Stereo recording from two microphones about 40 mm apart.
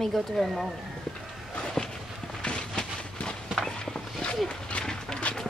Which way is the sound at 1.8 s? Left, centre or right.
Left.